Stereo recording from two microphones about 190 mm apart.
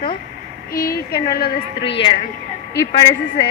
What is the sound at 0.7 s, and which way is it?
Speech, 50° left (ahead or behind).